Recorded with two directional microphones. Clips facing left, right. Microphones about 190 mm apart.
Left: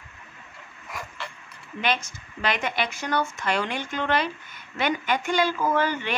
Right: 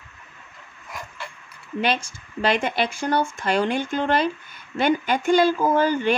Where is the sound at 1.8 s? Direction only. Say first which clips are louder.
Right 3 dB; 30° right (ahead or behind).